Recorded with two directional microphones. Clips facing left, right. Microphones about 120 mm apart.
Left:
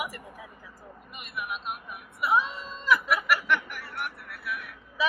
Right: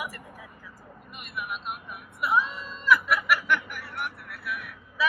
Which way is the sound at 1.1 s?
Centre (ahead or behind).